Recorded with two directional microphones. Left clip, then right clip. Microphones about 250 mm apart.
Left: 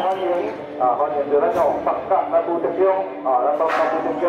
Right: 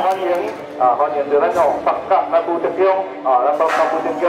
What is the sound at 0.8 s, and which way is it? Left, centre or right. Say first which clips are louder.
Speech: right 4 dB; centre.